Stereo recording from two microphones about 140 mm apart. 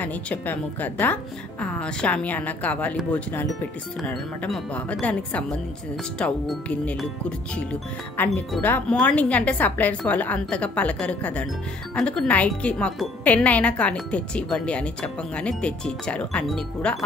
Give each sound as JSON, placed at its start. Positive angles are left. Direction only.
{"t": 0.0, "sound": "speech", "side_deg": 10}
{"t": 4.0, "sound": "speech", "side_deg": 5}